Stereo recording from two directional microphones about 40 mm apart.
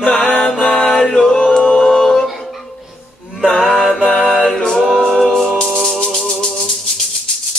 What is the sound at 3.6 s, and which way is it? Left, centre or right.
Music, centre.